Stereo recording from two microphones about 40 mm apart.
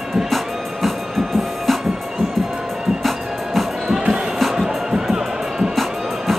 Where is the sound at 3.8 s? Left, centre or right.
Centre.